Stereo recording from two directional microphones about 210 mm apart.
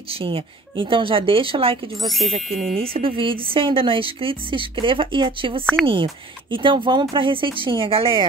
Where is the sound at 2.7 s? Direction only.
25° right (ahead or behind).